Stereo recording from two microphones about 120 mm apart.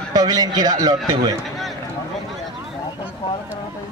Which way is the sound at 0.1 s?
30° right (ahead or behind).